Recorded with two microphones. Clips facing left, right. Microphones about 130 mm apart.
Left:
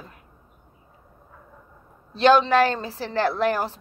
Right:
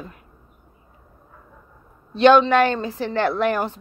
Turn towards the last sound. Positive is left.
turn(degrees=35)  # may be behind; listen again after turning